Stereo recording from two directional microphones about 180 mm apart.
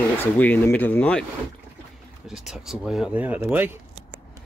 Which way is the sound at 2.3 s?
Centre (ahead or behind).